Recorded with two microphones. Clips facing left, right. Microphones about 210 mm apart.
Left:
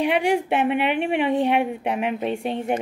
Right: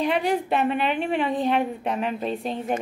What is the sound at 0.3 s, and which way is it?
A woman's voice, 15° left (ahead or behind).